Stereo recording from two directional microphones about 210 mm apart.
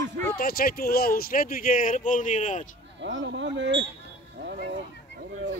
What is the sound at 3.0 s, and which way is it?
Speech, 60° right (ahead or behind).